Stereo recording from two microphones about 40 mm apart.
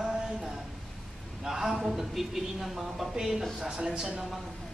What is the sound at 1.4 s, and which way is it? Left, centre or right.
A man's voice, centre.